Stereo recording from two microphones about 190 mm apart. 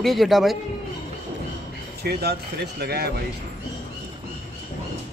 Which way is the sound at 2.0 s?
55° right (ahead or behind).